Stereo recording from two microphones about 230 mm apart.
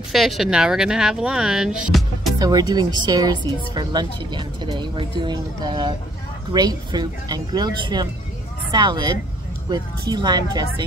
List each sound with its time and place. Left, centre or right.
0.1 s speech: centre
2.3 s a woman's voice: centre